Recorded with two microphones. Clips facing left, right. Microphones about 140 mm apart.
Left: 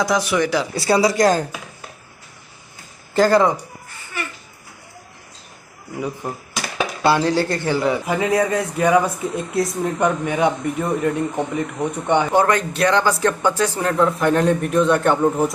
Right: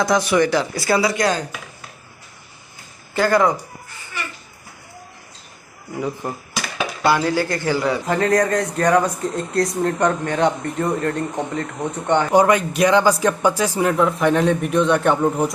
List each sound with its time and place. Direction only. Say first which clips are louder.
0.0 s speech: right 2 dB; 5° left (ahead or behind)
0.7 s speech: left 2 dB; 30° left (ahead or behind)
3.2 s speech: left 2 dB; 30° left (ahead or behind)
5.9 s speech: right 1 dB; centre (ahead or behind)
7.0 s a man's voice: left 1 dB; 25° left (ahead or behind)
12.3 s speech: right 2 dB; 10° right (ahead or behind)